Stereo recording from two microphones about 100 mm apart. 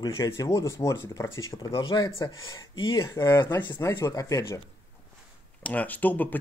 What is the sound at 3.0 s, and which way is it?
Speech, 30° left (ahead or behind).